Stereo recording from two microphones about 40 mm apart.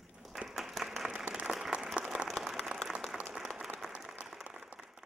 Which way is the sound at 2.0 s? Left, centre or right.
Right.